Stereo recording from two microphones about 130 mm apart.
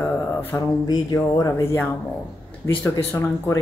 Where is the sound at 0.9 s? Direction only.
30° left (ahead or behind).